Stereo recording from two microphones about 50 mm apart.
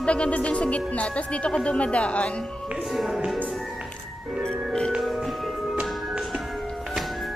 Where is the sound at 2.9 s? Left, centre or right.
Centre.